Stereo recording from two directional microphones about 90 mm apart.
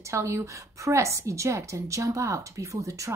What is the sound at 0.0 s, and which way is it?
A woman's voice, 35° right (ahead or behind).